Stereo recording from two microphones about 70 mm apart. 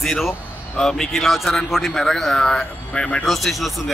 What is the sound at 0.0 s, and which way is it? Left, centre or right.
A man's voice, centre.